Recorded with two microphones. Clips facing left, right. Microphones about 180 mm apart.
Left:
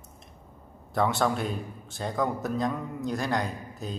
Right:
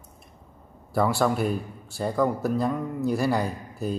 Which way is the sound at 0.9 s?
5° right (ahead or behind).